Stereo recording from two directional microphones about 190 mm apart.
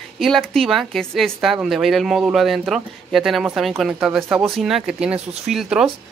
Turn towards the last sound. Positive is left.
turn(degrees=0)  # may be behind; listen again after turning